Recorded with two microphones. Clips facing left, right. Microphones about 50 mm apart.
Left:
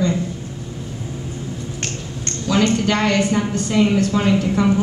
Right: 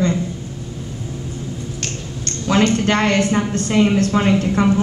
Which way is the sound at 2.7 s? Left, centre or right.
Right.